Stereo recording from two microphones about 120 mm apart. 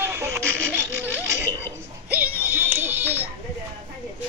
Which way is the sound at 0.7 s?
20° right (ahead or behind).